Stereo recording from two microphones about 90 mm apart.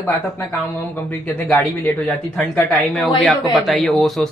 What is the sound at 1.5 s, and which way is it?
A woman's voice, 20° left (ahead or behind).